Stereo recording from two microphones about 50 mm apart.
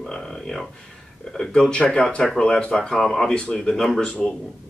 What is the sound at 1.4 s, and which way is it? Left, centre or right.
Speech, centre.